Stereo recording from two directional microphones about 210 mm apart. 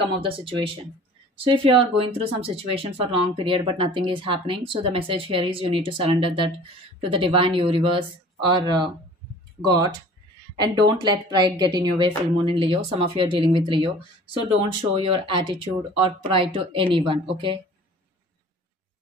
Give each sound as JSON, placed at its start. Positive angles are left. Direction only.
{"t": 0.0, "sound": "speech", "side_deg": -25}